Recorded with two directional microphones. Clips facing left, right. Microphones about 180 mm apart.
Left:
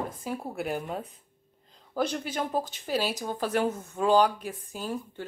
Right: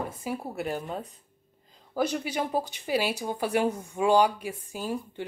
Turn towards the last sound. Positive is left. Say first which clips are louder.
# right 2 dB
turn(degrees=-10)  # may be behind; listen again after turning